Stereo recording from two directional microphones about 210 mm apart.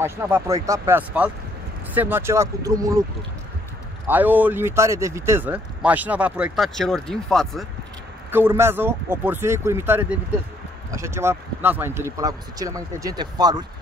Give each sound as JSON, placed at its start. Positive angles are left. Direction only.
{"t": 0.0, "sound": "speech", "side_deg": -15}
{"t": 4.1, "sound": "speech", "side_deg": -10}
{"t": 8.3, "sound": "speech", "side_deg": -10}